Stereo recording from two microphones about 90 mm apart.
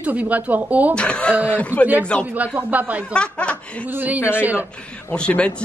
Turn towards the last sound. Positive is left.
turn(degrees=10)  # may be behind; listen again after turning